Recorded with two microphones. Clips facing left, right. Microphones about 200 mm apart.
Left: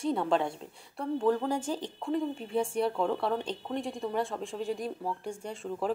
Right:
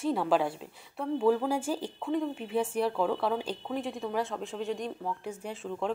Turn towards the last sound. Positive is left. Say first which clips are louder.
# even
turn(degrees=0)  # may be behind; listen again after turning